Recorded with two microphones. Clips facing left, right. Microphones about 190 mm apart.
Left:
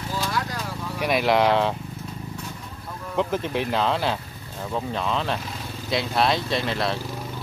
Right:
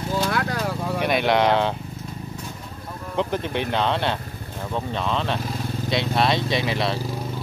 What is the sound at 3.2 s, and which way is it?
Speech, centre (ahead or behind).